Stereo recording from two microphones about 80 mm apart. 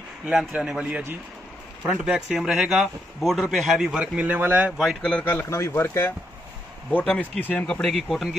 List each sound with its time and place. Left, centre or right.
0.3 s a man's voice: centre
4.2 s speech: centre
5.2 s speech: left
6.9 s speech: centre
7.6 s a man's voice: centre